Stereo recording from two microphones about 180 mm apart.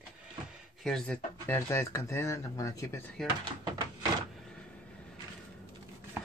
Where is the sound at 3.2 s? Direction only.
5° left (ahead or behind).